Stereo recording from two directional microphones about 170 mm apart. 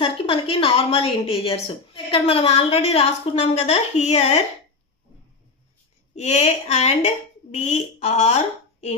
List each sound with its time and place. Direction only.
0.0 s a woman's voice: 30° left (ahead or behind)
6.1 s a woman's voice: 40° left (ahead or behind)